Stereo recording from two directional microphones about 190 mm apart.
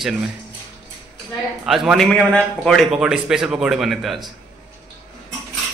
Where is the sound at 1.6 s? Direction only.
Centre (ahead or behind).